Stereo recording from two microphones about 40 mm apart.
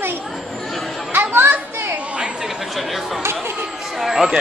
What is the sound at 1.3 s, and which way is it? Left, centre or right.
Children playing, right.